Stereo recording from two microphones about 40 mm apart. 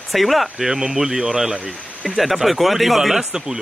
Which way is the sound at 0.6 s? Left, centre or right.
Centre.